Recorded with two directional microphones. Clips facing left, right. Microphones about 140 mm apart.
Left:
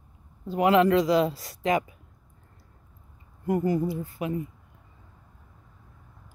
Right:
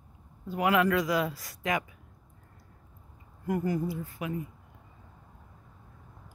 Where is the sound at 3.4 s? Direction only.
25° left (ahead or behind).